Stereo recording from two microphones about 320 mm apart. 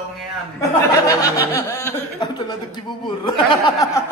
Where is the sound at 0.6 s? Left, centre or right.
Centre.